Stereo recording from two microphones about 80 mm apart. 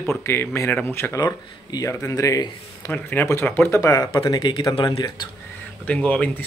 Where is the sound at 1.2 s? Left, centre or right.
Left.